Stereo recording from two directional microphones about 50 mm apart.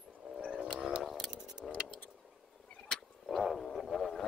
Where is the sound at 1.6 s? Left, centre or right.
Centre.